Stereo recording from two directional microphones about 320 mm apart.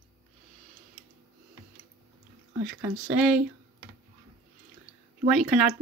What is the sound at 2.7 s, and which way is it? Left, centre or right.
Speech, centre.